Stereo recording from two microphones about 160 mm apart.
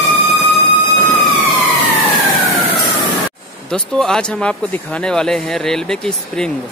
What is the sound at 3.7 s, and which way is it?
Speech, 5° left (ahead or behind).